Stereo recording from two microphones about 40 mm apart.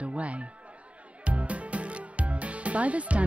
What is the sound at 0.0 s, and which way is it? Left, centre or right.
Music, right.